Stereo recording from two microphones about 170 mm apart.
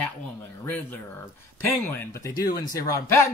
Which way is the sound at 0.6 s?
15° left (ahead or behind).